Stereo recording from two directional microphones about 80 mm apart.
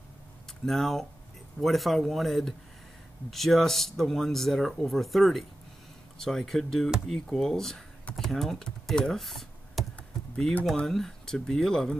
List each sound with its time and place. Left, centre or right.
0.7 s speech: centre
9.9 s computer keyboard: centre
10.8 s speech: centre